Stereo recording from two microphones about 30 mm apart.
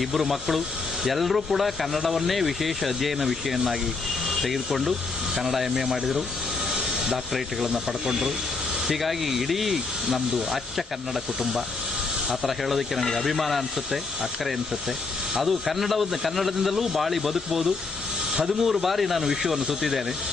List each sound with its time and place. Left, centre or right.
0.0 s speech: centre
7.7 s speech: centre
8.8 s speech: centre
12.3 s speech: centre
15.3 s speech: centre
16.7 s speech: centre